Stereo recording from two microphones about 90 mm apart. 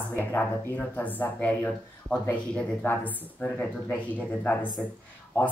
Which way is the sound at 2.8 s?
25° left (ahead or behind).